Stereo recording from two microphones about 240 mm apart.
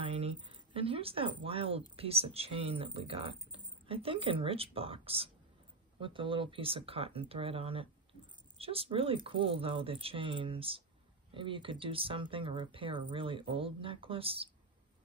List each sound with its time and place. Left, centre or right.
0.1 s speech: right